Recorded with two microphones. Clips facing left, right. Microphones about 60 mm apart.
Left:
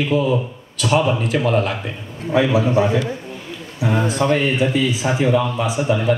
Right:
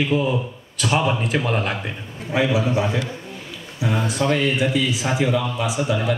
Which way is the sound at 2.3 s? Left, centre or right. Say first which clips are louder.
Left 4 dB; left.